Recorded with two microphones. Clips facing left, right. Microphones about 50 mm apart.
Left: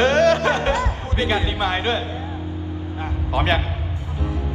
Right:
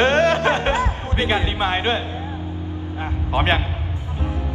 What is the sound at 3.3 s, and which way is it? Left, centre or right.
Speech, right.